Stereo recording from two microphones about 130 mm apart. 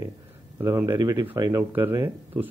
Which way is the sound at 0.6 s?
20° right (ahead or behind).